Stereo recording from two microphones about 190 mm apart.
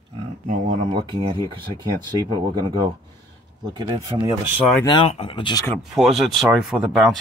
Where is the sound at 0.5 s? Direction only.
40° right (ahead or behind).